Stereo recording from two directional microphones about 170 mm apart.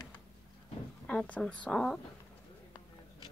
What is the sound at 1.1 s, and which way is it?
Speech, 5° left (ahead or behind).